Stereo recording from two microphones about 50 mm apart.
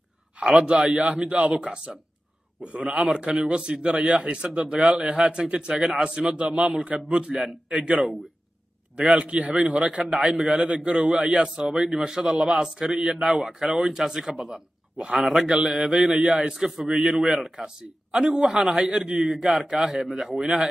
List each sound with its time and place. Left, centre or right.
0.4 s a man's voice: centre
0.9 s a man's voice: right
9.1 s a man's voice: centre
9.4 s a man's voice: right
10.4 s a man's voice: centre
12.0 s a man's voice: centre